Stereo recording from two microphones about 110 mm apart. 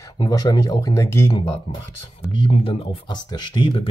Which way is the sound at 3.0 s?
40° left (ahead or behind).